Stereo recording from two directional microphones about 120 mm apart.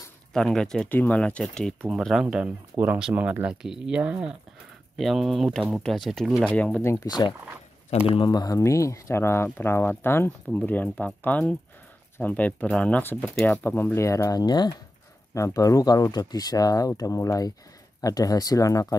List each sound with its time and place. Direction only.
0.3 s speech: 5° left (ahead or behind)
6.5 s speech: 10° left (ahead or behind)
6.9 s speech: 30° left (ahead or behind)
7.9 s speech: 65° left (ahead or behind)
8.3 s speech: 30° left (ahead or behind)